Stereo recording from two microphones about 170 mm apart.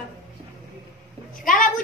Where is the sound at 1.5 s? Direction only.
50° left (ahead or behind).